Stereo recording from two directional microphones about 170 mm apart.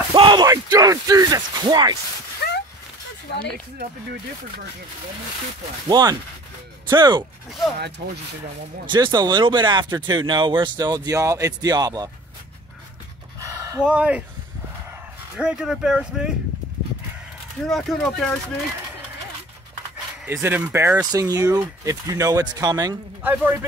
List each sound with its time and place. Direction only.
0.1 s speech: 25° right (ahead or behind)
2.4 s a sound: 70° left (ahead or behind)
5.9 s speech: 25° right (ahead or behind)
8.8 s speech: 25° right (ahead or behind)
13.4 s a sound: 20° right (ahead or behind)
13.8 s a man's voice: 5° right (ahead or behind)
15.3 s speech: 5° right (ahead or behind)
17.6 s speech: centre (ahead or behind)
20.2 s speech: 15° right (ahead or behind)
23.2 s a man's voice: 10° right (ahead or behind)